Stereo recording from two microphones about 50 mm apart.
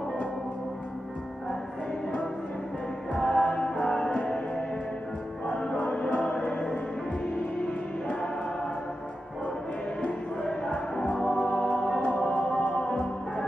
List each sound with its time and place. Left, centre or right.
3.1 s music: centre
5.5 s music: centre
10.4 s music: centre